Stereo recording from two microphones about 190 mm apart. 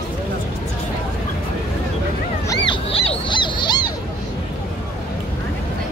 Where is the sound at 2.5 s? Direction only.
25° left (ahead or behind).